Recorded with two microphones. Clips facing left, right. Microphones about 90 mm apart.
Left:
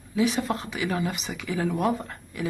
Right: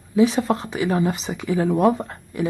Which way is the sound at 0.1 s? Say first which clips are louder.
Right 7 dB; 30° right (ahead or behind).